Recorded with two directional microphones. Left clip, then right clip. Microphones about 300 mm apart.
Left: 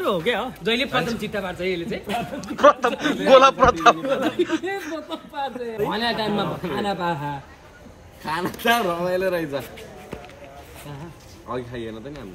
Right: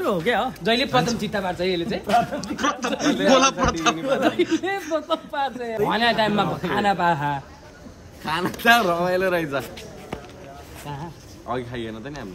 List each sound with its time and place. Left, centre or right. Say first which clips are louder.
0.2 s speech: right 2 dB; centre
0.7 s a man's voice: right 1 dB; right
2.0 s speech: right 7 dB; centre
11.5 s speech: right 1 dB; centre